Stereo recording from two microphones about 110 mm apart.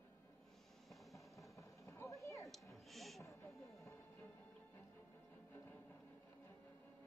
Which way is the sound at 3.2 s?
30° left (ahead or behind).